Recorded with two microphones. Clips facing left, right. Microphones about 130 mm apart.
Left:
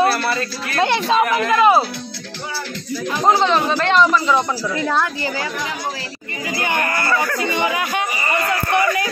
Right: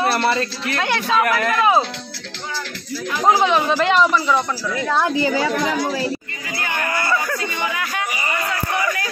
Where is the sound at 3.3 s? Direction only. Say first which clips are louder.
Even; 10° right (ahead or behind).